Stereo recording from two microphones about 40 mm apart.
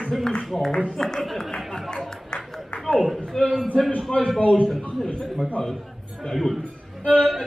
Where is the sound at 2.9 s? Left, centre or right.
Centre.